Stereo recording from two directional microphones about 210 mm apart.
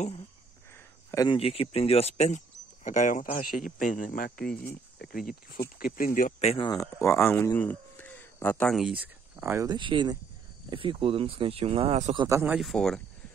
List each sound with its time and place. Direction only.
1.1 s speech: 20° left (ahead or behind); by 12.2 s 30° right (ahead or behind)
12.2 s speech: 15° right (ahead or behind)
12.5 s speech: centre (ahead or behind)